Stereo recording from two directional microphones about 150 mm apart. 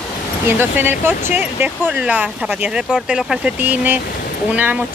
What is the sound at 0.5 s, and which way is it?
Speech, 15° right (ahead or behind).